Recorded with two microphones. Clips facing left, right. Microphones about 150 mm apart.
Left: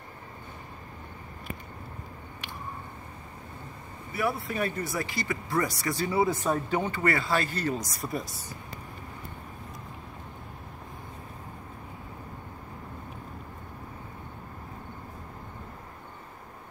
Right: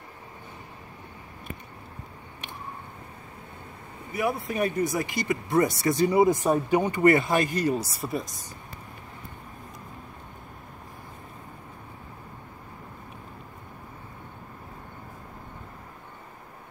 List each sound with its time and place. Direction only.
4.1 s speech: 15° right (ahead or behind); by 8.3 s centre (ahead or behind)